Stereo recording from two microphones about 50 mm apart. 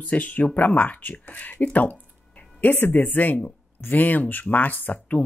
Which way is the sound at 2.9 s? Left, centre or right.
Left.